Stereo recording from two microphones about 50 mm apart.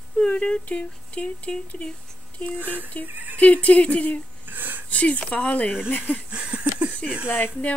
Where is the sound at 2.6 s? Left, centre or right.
Right.